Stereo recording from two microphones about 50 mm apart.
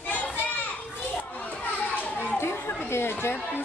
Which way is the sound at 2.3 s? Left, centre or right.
Left.